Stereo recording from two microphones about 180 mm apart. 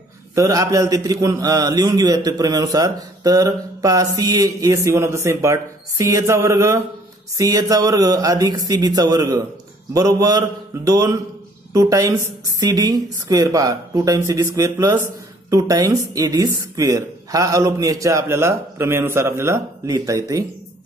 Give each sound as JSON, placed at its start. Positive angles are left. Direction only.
{"t": 0.3, "sound": "a man's voice", "side_deg": -20}